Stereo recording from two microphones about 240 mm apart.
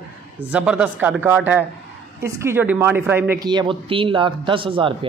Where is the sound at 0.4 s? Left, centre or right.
Centre.